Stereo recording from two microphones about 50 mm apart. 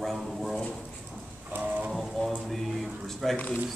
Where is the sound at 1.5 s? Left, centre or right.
Right.